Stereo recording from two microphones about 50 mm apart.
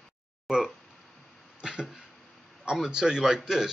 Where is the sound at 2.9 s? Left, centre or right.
Centre.